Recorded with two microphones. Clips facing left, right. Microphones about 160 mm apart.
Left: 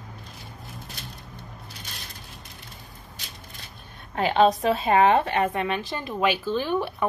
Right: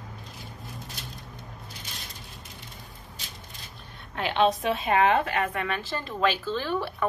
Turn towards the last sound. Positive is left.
turn(degrees=15)  # may be behind; listen again after turning